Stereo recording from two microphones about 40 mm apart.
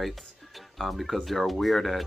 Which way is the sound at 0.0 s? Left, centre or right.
Centre.